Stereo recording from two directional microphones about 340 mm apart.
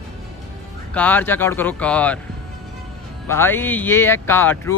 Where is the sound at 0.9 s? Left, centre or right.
Centre.